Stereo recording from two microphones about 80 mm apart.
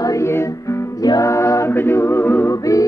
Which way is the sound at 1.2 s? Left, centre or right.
Left.